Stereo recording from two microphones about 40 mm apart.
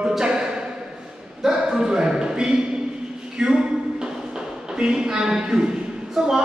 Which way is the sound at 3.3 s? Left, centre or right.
Right.